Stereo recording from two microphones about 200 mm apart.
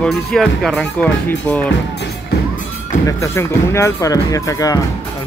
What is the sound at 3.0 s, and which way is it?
Speech, 15° left (ahead or behind).